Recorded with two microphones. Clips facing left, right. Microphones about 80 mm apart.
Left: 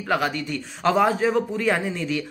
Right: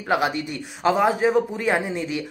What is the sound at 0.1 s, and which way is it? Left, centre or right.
Speech, centre.